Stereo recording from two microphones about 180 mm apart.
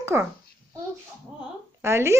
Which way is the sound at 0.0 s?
15° right (ahead or behind).